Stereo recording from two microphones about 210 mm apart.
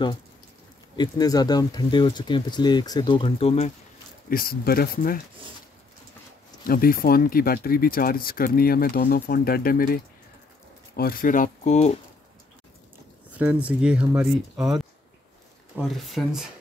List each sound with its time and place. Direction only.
0.9 s speech: 20° left (ahead or behind)
4.3 s speech: 45° left (ahead or behind)
6.6 s speech: 45° left (ahead or behind)
11.0 s speech: 45° left (ahead or behind)
13.3 s speech: 5° right (ahead or behind)